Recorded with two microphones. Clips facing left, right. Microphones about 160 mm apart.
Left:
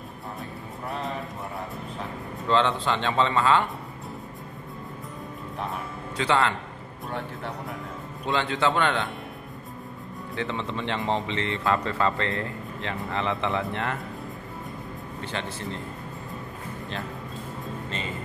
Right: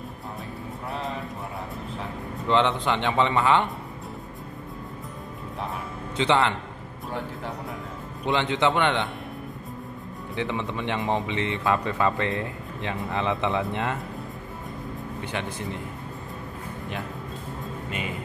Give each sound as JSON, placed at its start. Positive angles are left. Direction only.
{"t": 2.4, "sound": "speech", "side_deg": -20}
{"t": 6.1, "sound": "speech", "side_deg": -20}
{"t": 8.3, "sound": "speech", "side_deg": -20}
{"t": 10.3, "sound": "speech", "side_deg": -15}
{"t": 15.3, "sound": "speech", "side_deg": -15}